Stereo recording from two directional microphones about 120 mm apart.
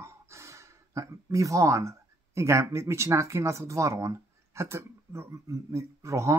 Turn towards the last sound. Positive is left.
turn(degrees=-25)  # may be behind; listen again after turning